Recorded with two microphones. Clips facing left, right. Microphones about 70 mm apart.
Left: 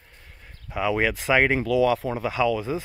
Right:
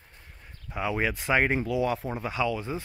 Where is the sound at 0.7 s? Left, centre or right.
Left.